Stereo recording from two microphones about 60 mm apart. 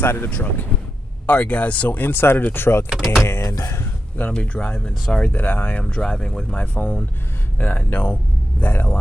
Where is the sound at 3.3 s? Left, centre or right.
Left.